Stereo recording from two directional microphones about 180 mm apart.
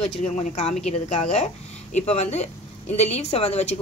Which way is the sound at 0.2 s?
40° left (ahead or behind).